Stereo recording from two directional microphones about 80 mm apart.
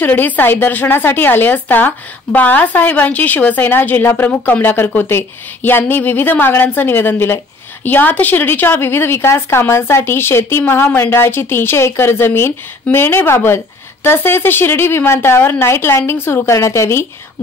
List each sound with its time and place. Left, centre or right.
0.0 s a woman's voice: left